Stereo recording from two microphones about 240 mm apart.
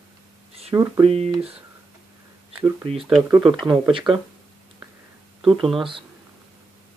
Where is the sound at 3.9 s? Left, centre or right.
Right.